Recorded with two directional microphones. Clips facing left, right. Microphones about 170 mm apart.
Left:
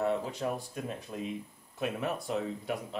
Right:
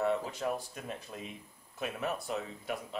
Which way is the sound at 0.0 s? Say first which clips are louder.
Left 1 dB; centre (ahead or behind).